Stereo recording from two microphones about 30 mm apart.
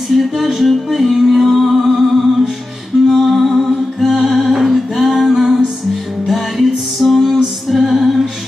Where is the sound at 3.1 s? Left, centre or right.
Centre.